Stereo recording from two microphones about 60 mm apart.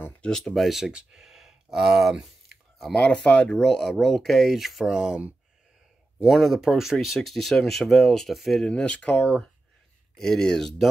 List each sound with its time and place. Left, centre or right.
0.2 s speech: centre
3.1 s speech: left
3.5 s speech: centre
6.2 s speech: centre
8.6 s speech: centre
10.1 s speech: centre